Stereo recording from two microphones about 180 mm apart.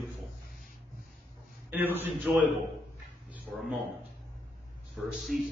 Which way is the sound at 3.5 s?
Centre (ahead or behind).